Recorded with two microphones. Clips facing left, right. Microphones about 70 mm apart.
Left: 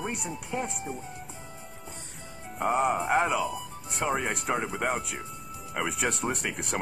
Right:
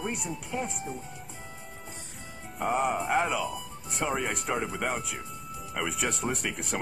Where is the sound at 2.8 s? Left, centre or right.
Centre.